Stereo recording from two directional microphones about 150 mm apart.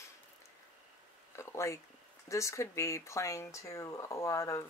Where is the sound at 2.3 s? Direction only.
20° left (ahead or behind).